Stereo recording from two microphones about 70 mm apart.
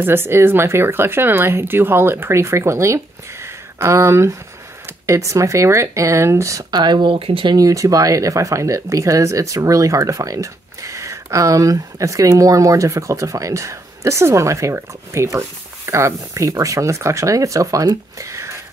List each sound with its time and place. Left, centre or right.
0.0 s speech: right
6.7 s speech: right
7.6 s speech: right
18.2 s a sound: right